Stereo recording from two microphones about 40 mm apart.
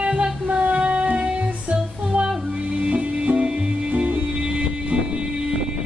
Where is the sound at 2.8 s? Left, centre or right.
Right.